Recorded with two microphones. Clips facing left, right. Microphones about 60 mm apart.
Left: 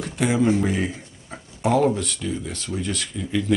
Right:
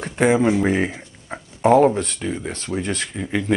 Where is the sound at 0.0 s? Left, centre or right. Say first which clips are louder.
Right 4 dB; right.